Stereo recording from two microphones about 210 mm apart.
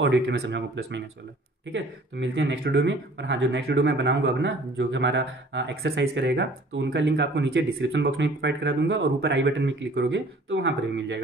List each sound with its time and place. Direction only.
0.0 s speech: 60° right (ahead or behind)